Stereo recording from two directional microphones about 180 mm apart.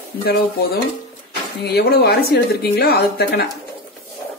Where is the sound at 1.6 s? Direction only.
60° left (ahead or behind).